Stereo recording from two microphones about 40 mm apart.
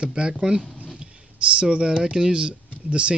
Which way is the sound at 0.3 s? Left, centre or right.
Centre.